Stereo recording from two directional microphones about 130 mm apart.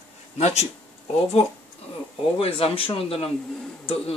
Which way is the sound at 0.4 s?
60° left (ahead or behind).